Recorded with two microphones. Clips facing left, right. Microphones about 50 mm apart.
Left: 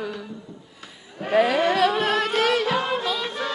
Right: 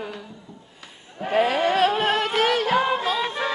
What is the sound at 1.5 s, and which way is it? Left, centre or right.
Music, right.